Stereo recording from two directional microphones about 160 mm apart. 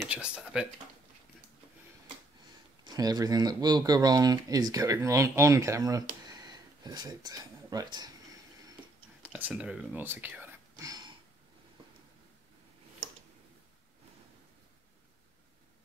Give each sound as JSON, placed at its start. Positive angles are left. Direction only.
{"t": 0.1, "sound": "speech", "side_deg": -5}
{"t": 2.8, "sound": "speech", "side_deg": -25}
{"t": 9.3, "sound": "speech", "side_deg": -5}